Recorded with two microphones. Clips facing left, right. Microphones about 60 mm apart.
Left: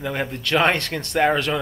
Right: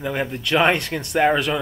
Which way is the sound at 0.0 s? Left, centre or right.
Centre.